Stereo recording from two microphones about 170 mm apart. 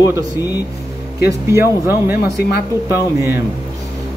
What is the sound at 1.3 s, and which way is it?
Speech, 15° right (ahead or behind).